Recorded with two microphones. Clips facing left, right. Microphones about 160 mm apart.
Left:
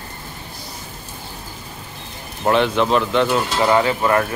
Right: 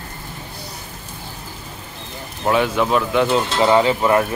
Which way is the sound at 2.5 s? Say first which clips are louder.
Left 1 dB; 10° right (ahead or behind).